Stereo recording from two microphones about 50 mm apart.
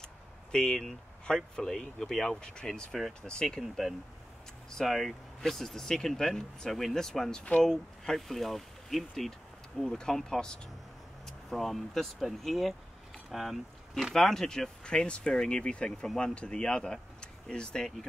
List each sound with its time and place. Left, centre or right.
0.5 s speech: centre
2.9 s speech: centre
3.2 s speech: centre
4.7 s speech: centre
9.8 s speech: centre
14.8 s speech: centre